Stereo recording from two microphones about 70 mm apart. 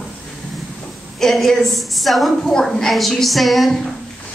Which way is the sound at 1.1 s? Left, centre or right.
Centre.